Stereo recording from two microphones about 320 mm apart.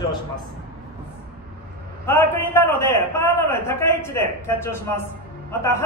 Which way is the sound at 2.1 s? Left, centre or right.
Centre.